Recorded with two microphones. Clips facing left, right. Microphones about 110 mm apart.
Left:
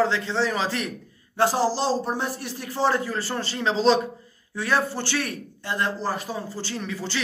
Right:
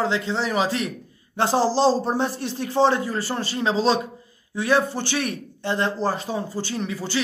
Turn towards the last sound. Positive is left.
turn(degrees=-15)  # may be behind; listen again after turning